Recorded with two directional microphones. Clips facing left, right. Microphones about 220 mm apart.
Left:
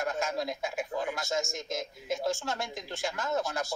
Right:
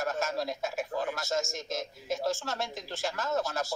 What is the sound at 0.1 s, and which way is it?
Speech, 15° left (ahead or behind).